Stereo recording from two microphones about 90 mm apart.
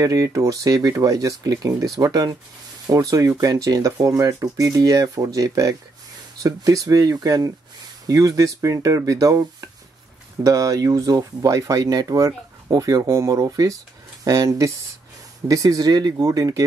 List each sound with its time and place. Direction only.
0.0 s speech: 40° right (ahead or behind)